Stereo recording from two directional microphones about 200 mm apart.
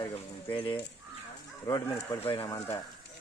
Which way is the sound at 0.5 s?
25° left (ahead or behind).